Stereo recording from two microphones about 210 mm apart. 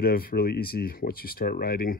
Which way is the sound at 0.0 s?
45° left (ahead or behind).